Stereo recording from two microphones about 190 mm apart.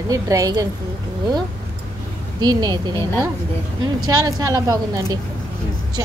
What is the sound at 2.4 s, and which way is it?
Speech, 20° right (ahead or behind).